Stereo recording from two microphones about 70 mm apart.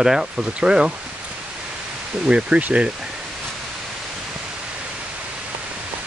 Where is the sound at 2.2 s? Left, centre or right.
Centre.